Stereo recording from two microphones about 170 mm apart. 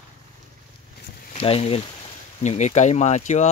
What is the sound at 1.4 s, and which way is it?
Speech, 35° left (ahead or behind).